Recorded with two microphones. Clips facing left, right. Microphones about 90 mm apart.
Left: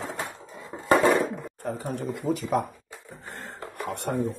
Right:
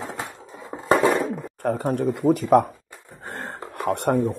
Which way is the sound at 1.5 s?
55° right (ahead or behind).